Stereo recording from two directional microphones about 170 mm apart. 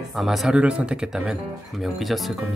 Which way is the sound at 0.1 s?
Centre (ahead or behind).